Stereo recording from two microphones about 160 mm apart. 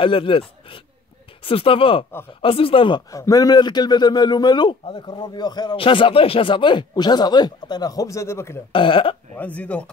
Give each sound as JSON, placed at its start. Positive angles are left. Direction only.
{"t": 0.0, "sound": "speech", "side_deg": 35}
{"t": 3.1, "sound": "a man's voice", "side_deg": 20}
{"t": 8.7, "sound": "speech", "side_deg": 35}
{"t": 9.3, "sound": "speech", "side_deg": 10}